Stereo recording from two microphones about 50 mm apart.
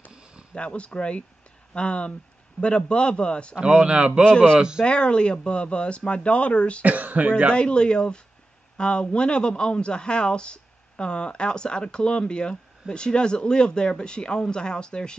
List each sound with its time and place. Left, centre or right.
0.1 s a sound: centre
0.6 s speech: left
3.5 s speech: centre
4.8 s speech: left
6.8 s speech: right
7.5 s speech: centre